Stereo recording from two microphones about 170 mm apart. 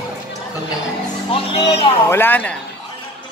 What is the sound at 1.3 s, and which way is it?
Speech, 35° left (ahead or behind).